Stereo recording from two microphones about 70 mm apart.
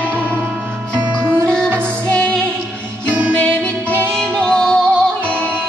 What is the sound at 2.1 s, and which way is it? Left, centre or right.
Music, centre.